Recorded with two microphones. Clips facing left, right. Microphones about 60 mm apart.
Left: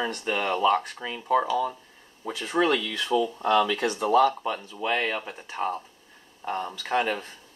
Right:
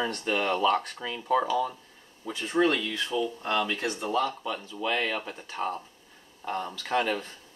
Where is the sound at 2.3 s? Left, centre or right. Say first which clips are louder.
Left 1 dB; left.